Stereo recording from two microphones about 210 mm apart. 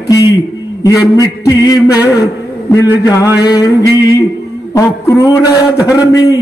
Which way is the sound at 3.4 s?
20° left (ahead or behind).